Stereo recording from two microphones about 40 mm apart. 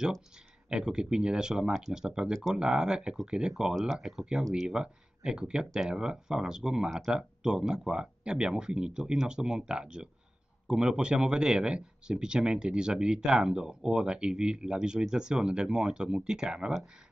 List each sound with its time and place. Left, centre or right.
0.7 s speech: centre
3.9 s speech: centre
4.6 s speech: right